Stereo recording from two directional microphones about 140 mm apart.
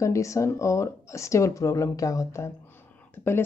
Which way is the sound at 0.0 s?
20° left (ahead or behind).